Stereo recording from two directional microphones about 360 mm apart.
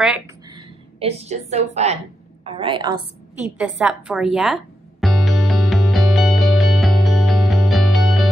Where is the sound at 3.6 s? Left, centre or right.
Centre.